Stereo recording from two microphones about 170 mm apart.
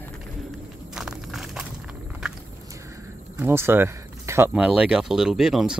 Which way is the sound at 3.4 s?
15° right (ahead or behind).